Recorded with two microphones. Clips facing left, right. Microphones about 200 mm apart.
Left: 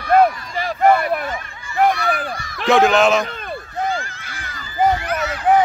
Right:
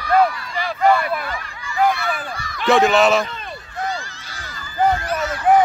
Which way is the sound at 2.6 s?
Centre (ahead or behind).